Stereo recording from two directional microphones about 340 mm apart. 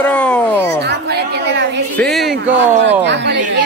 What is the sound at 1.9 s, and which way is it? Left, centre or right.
Speech, centre.